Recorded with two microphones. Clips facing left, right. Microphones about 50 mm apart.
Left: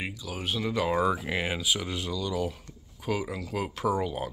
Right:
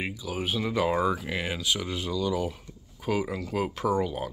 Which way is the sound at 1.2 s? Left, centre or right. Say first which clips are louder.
Left 1 dB; centre.